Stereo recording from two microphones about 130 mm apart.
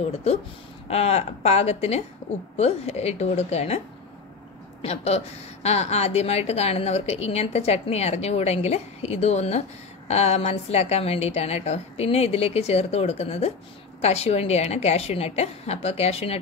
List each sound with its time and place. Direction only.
0.8 s a woman's voice: 55° left (ahead or behind)
4.8 s a woman's voice: 55° left (ahead or behind)